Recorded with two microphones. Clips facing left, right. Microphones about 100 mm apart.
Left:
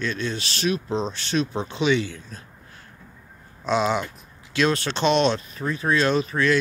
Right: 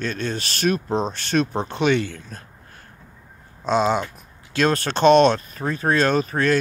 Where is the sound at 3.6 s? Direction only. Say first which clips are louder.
Right 2 dB; 40° right (ahead or behind).